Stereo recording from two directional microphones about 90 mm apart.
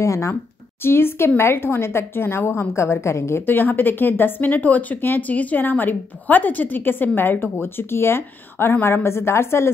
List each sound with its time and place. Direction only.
0.0 s speech: 35° left (ahead or behind)